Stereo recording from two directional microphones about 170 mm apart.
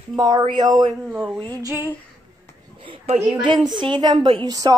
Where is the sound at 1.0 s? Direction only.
Centre (ahead or behind).